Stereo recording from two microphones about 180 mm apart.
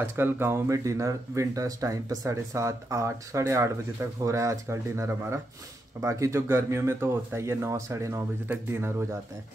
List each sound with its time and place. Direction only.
0.0 s speech: 10° right (ahead or behind)